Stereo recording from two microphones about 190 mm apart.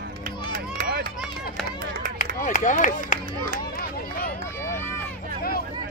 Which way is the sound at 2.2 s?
40° left (ahead or behind).